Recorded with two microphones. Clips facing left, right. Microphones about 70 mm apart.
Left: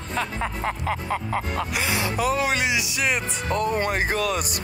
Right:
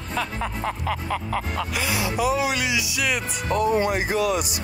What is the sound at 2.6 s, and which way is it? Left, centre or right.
Music, left.